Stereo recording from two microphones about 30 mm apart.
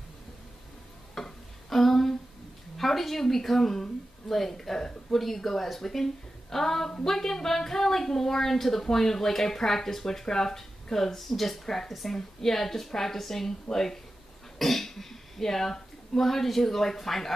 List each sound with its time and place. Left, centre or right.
1.1 s a sound: centre
2.8 s a woman's voice: centre
12.2 s speech: centre